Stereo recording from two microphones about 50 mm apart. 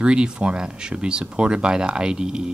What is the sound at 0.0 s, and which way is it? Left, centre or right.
Speech, centre.